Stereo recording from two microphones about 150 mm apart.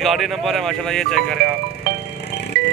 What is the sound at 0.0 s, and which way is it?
Speech, centre (ahead or behind).